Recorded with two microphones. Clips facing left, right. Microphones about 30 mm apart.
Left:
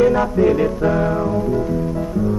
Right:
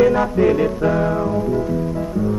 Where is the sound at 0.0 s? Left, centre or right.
Centre.